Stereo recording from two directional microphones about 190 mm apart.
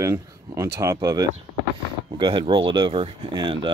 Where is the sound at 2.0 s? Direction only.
25° right (ahead or behind).